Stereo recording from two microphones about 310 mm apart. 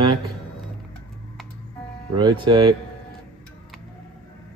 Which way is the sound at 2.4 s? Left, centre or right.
Centre.